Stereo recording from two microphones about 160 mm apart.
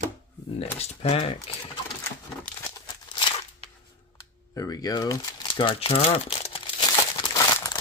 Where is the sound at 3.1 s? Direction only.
30° left (ahead or behind).